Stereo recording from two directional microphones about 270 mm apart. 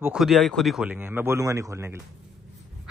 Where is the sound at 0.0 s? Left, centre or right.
Centre.